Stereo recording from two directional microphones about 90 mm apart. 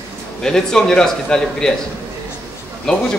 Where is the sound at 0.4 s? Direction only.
5° left (ahead or behind).